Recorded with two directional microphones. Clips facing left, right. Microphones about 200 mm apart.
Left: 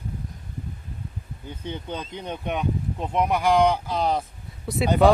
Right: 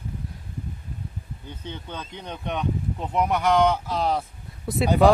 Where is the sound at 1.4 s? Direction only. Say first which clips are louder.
Left 5 dB; 10° left (ahead or behind).